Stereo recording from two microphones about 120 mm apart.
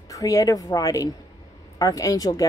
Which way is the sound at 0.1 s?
30° left (ahead or behind).